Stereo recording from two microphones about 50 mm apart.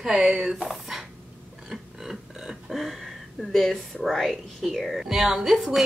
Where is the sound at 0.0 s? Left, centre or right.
Centre.